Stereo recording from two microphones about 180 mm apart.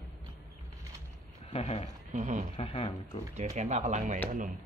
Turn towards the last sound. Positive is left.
turn(degrees=-40)  # may be behind; listen again after turning